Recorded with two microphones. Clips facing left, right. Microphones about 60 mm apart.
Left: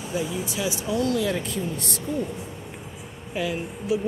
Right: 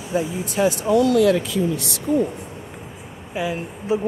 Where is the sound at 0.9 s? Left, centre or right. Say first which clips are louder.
Right 8 dB; right.